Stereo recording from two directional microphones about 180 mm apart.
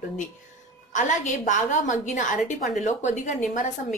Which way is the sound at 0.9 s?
45° left (ahead or behind).